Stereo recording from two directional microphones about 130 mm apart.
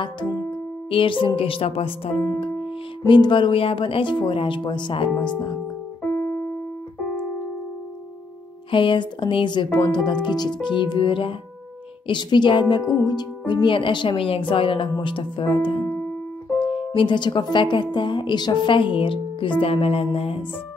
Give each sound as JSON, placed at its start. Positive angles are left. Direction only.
{"t": 0.5, "sound": "speech", "side_deg": 40}
{"t": 6.1, "sound": "keyboard", "side_deg": 25}
{"t": 7.0, "sound": "keyboard", "side_deg": 10}
{"t": 8.6, "sound": "speech", "side_deg": 40}